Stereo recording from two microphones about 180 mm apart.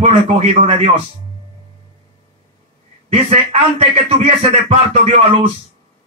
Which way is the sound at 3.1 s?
35° right (ahead or behind).